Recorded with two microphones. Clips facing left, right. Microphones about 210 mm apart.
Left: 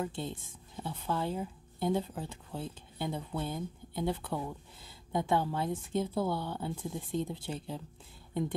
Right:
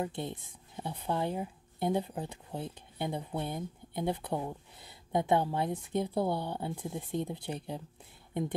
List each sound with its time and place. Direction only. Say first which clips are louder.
0.0 s speech: right 1 dB; 20° right (ahead or behind)